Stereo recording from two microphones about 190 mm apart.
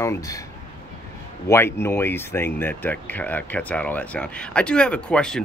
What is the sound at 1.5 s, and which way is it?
Speech, 15° left (ahead or behind).